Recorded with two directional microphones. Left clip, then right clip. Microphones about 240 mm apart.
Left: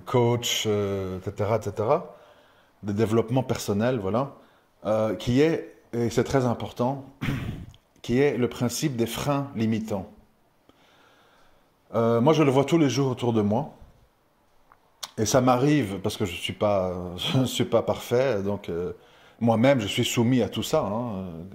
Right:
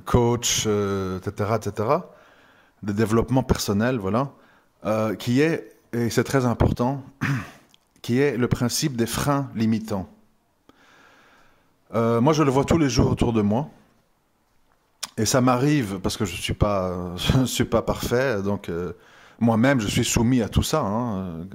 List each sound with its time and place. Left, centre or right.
0.0 s speech: right
11.9 s speech: right
15.0 s speech: right